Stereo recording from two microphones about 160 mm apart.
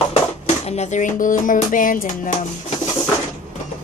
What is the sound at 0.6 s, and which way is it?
Music, 45° left (ahead or behind).